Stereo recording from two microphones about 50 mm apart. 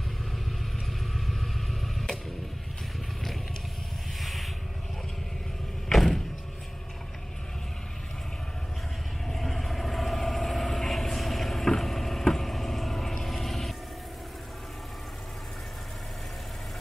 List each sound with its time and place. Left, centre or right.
1.2 s vehicle: centre
4.2 s vehicle: centre
5.9 s vehicle: centre
9.3 s vehicle: centre